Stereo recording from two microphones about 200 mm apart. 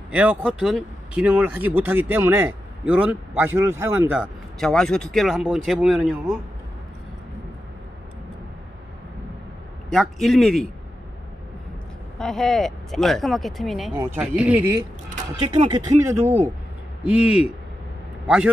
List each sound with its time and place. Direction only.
0.1 s speech: 5° right (ahead or behind)
9.9 s speech: centre (ahead or behind)
12.2 s speech: centre (ahead or behind)
15.5 s speech: 25° right (ahead or behind); by 18.5 s 5° right (ahead or behind)